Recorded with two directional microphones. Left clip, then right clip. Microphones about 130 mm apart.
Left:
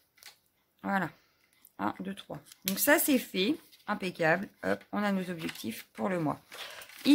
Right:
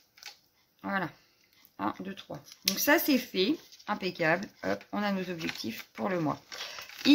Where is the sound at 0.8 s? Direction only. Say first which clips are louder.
Left 1 dB; 60° left (ahead or behind).